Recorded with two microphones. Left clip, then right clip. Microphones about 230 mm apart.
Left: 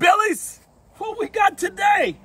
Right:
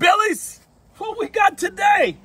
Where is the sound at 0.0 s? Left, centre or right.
Centre.